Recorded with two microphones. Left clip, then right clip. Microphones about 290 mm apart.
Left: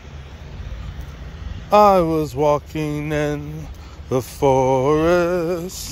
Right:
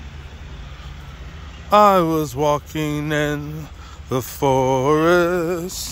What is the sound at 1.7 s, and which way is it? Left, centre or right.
Mantra, centre.